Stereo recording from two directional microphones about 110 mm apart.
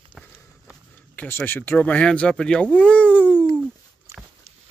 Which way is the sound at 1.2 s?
20° left (ahead or behind).